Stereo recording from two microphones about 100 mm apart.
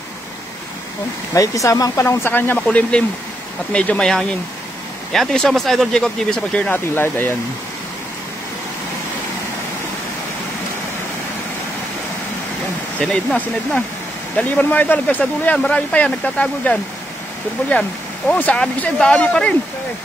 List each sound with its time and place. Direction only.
1.3 s speech: 35° left (ahead or behind); by 6.7 s 10° left (ahead or behind)
6.7 s speech: 20° left (ahead or behind)
13.0 s speech: 10° left (ahead or behind)
18.3 s speech: 15° left (ahead or behind)